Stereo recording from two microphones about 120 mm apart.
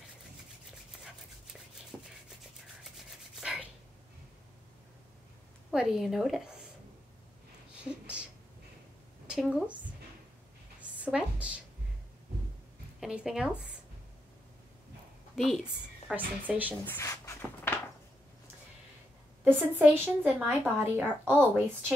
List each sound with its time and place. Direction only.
1.9 s rub: 5° right (ahead or behind)
3.3 s rub: 5° right (ahead or behind)
5.7 s a woman's voice: 5° right (ahead or behind)
9.3 s speech: 5° right (ahead or behind)
10.8 s a sound: 10° right (ahead or behind)
13.0 s speech: 5° right (ahead or behind)
15.3 s a woman's voice: centre (ahead or behind)
15.6 s a woman's voice: 10° right (ahead or behind)
16.8 s a sound: 20° left (ahead or behind)
19.4 s a woman's voice: 15° right (ahead or behind)